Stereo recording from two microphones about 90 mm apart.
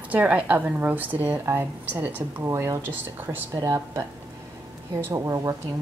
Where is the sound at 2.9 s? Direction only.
20° right (ahead or behind).